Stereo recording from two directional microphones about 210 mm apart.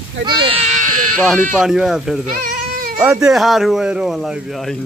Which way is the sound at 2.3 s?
45° right (ahead or behind).